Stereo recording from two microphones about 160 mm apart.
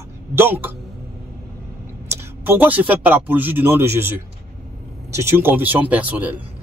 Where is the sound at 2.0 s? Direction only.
10° right (ahead or behind).